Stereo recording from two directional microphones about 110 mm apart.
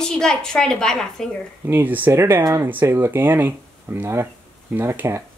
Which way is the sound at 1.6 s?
15° right (ahead or behind).